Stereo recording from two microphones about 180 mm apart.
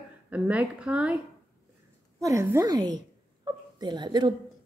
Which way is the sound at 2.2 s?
15° right (ahead or behind).